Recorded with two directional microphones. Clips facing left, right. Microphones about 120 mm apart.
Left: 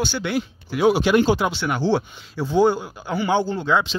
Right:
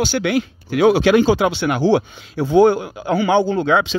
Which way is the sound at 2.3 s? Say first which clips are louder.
Right 5 dB; 60° right (ahead or behind).